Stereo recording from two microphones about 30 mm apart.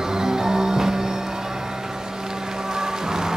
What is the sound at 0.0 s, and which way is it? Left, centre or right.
Music, right.